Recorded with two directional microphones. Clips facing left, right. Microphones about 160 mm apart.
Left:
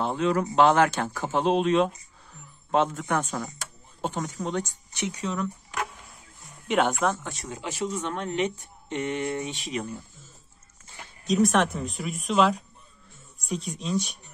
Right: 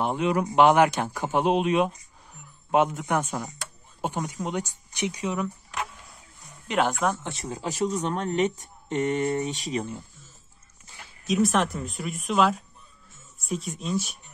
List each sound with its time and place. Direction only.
0.0 s speech: 15° right (ahead or behind)
6.7 s speech: centre (ahead or behind)
7.2 s speech: 30° right (ahead or behind)
11.2 s speech: centre (ahead or behind)